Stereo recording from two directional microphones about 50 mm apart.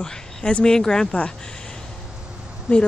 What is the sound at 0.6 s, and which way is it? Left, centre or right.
Speech, centre.